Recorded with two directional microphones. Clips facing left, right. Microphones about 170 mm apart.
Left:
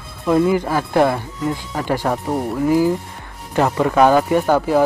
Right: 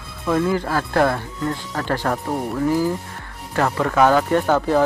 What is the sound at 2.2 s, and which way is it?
Speech, centre (ahead or behind).